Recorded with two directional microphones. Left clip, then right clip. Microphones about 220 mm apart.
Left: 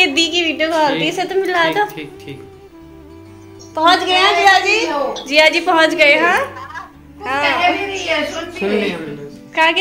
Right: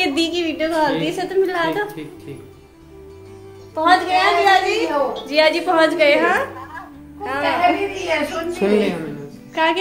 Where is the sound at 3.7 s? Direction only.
25° left (ahead or behind).